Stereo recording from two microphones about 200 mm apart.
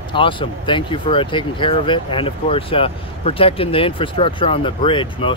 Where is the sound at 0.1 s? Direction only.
25° left (ahead or behind).